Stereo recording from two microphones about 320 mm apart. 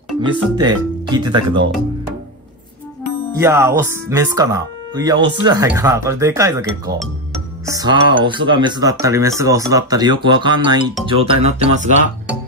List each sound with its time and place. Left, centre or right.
0.2 s speech: centre
3.3 s speech: centre